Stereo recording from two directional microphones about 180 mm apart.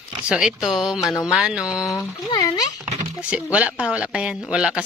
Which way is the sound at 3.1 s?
5° right (ahead or behind).